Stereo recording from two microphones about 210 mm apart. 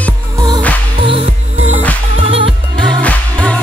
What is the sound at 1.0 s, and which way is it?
Music, 25° right (ahead or behind).